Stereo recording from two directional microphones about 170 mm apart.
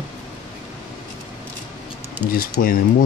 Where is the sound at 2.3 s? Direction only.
55° left (ahead or behind).